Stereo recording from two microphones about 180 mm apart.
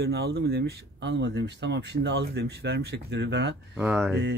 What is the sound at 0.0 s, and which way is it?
Speech, 65° right (ahead or behind).